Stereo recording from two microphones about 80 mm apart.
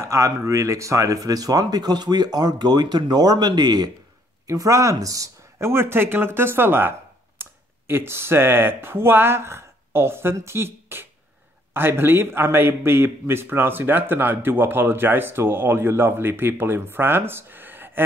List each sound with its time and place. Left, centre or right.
0.0 s speech: right
4.5 s a man's voice: right